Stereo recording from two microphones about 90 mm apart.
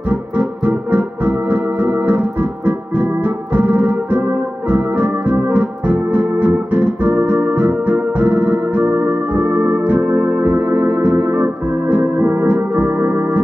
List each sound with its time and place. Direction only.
0.1 s organ: 15° right (ahead or behind)